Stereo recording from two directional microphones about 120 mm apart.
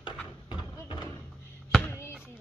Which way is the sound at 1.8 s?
20° left (ahead or behind).